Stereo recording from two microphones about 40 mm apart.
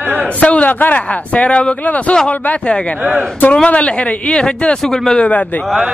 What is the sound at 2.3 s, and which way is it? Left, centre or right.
A man's voice, left.